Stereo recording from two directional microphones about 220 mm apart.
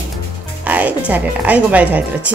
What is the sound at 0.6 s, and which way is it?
Music, 5° right (ahead or behind).